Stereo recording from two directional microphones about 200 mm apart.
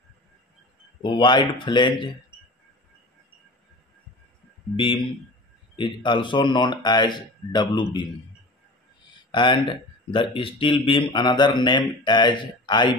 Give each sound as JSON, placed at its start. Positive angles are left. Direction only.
{"t": 1.0, "sound": "speech", "side_deg": 25}
{"t": 4.7, "sound": "speech", "side_deg": 25}
{"t": 9.3, "sound": "speech", "side_deg": 25}